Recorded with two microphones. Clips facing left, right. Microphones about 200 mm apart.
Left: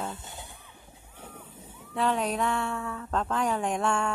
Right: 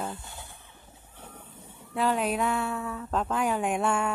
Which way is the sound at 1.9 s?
5° right (ahead or behind).